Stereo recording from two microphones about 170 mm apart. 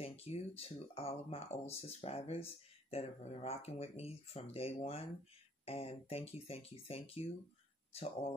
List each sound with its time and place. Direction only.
0.0 s speech: 35° left (ahead or behind)